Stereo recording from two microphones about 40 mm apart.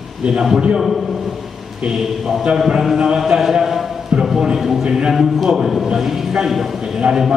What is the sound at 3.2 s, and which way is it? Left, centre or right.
A man's voice, centre.